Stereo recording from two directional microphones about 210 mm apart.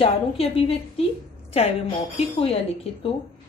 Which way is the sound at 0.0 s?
25° left (ahead or behind).